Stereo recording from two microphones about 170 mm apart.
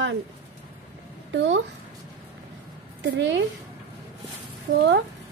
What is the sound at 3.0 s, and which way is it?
Speech, 90° right.